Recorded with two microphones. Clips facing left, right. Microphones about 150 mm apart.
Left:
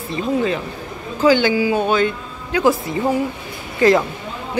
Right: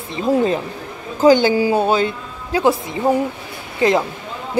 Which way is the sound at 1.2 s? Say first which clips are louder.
Right 2 dB; 40° right (ahead or behind).